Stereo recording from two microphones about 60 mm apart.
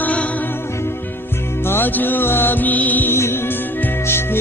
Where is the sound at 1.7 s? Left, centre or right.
Left.